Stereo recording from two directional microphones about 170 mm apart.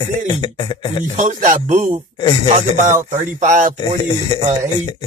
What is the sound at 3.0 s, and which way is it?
Speech, 50° right (ahead or behind).